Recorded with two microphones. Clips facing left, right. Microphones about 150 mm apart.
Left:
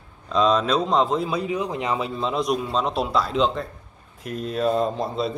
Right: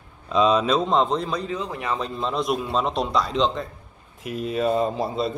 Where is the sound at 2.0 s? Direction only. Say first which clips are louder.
Left 1 dB; centre (ahead or behind).